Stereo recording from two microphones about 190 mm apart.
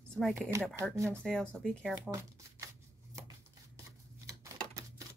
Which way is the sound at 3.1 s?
20° right (ahead or behind).